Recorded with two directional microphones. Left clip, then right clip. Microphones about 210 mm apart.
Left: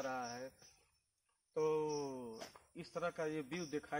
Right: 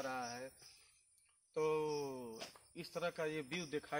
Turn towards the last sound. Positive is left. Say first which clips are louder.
# right 1 dB
turn(degrees=-40)  # may be behind; listen again after turning